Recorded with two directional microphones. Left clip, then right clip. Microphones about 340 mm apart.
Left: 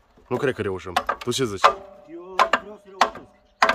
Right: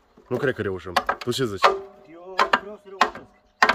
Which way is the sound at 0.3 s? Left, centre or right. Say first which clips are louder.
Left 1 dB; centre.